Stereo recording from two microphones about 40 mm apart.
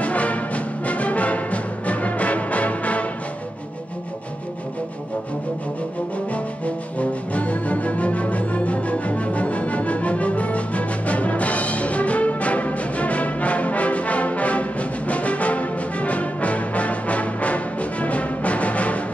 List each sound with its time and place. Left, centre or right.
0.0 s music: left
6.1 s music: left